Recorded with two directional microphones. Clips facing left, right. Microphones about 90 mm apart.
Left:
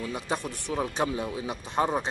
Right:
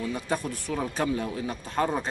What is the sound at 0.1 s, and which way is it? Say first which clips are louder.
Speech: right 2 dB; 20° left (ahead or behind).